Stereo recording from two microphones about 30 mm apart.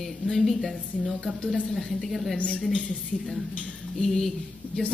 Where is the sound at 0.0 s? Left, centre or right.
Centre.